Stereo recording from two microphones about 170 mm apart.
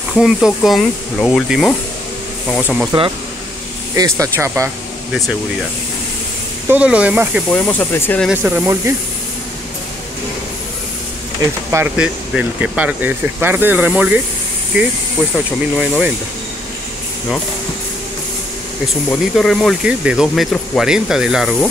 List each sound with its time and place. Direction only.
0.1 s speech: centre (ahead or behind)
2.9 s speech: 25° right (ahead or behind)
5.1 s speech: centre (ahead or behind)
6.7 s speech: 5° right (ahead or behind)
7.4 s speech: 10° left (ahead or behind)
8.3 s speech: 10° right (ahead or behind)
11.7 s speech: 10° right (ahead or behind)
19.0 s speech: 5° left (ahead or behind)